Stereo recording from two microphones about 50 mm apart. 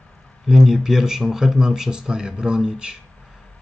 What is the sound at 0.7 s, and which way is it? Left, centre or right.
Speech, centre.